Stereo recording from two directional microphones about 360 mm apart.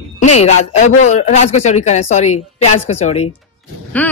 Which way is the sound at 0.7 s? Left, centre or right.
Centre.